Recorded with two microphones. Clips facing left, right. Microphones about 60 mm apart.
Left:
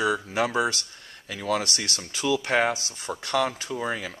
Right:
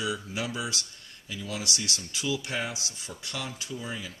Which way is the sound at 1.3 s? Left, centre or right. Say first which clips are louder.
Left 8 dB; left.